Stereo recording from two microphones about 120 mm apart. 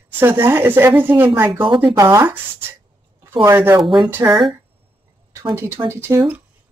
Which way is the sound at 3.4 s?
20° right (ahead or behind).